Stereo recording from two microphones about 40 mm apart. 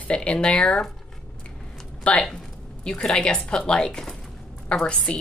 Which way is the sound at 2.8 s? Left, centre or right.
Left.